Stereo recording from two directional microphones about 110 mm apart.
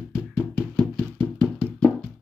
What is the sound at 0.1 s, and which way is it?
Knock, 5° right (ahead or behind).